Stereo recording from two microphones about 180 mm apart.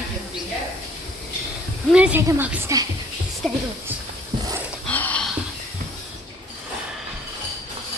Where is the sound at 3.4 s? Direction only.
Centre (ahead or behind).